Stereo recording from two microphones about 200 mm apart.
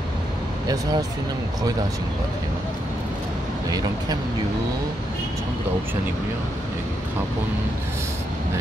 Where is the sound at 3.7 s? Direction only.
20° right (ahead or behind).